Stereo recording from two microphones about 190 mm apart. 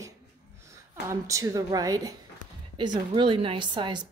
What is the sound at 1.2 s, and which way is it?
Speech, 15° right (ahead or behind).